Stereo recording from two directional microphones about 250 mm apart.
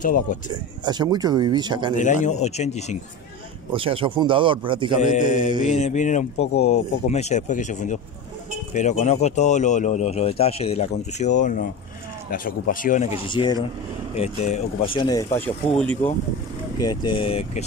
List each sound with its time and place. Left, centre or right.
0.0 s speech: left
0.8 s speech: centre
2.0 s speech: left
3.7 s speech: right
5.1 s speech: left
13.3 s speech: centre
16.8 s speech: centre